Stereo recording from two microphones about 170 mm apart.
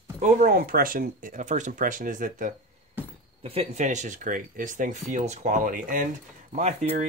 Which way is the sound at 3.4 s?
40° right (ahead or behind).